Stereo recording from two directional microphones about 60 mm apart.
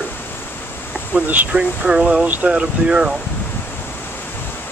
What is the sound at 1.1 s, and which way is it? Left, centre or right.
Speech, right.